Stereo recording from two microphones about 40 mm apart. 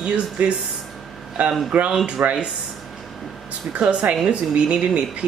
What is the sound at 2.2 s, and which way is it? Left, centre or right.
Speech, right.